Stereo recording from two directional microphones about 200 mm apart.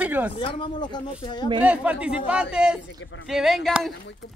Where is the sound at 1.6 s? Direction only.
5° right (ahead or behind).